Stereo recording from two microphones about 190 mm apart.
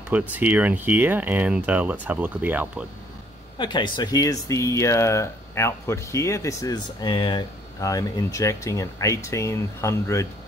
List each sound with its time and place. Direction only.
0.3 s speech: 10° right (ahead or behind)
3.5 s speech: 25° left (ahead or behind)